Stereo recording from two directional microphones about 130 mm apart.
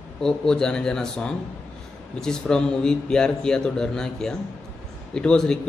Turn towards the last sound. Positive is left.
turn(degrees=5)  # may be behind; listen again after turning